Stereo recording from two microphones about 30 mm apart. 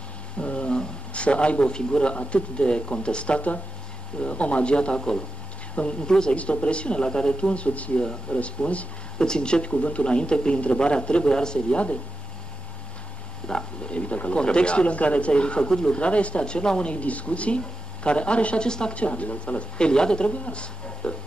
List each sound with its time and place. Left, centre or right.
0.4 s a sound: left
1.1 s speech: left
6.0 s a woman's voice: left
6.3 s speech: left
9.2 s speech: left
11.7 s speech: left
13.4 s speech: left
13.9 s speech: left
16.9 s speech: left
18.7 s a woman's voice: left
18.9 s speech: left
19.8 s speech: left